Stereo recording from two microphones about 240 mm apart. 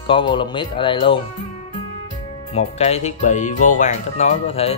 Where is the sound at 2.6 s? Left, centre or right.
Left.